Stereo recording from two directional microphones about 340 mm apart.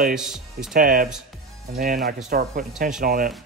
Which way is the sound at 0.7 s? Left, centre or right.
Right.